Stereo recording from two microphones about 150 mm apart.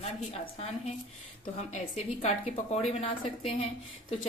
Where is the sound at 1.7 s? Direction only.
50° left (ahead or behind).